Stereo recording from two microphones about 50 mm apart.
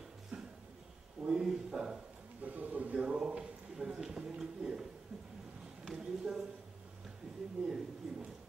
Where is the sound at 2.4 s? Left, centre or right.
Right.